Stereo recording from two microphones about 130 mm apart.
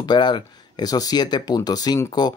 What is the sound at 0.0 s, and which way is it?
Speech, 35° left (ahead or behind).